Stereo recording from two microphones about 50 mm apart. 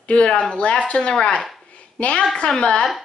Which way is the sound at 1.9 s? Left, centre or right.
Left.